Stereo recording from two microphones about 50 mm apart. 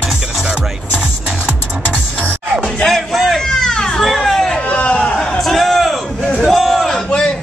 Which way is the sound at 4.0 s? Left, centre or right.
Centre.